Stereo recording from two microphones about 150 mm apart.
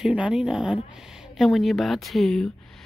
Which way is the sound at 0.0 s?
5° right (ahead or behind).